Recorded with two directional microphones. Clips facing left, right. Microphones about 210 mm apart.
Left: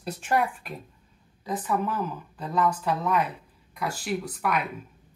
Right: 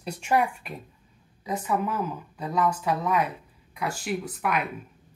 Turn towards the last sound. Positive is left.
turn(degrees=0)  # may be behind; listen again after turning